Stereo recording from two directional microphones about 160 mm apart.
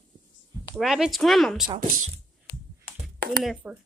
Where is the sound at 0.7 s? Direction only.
5° right (ahead or behind).